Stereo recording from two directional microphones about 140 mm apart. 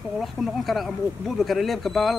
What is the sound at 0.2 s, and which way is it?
Speech, centre (ahead or behind).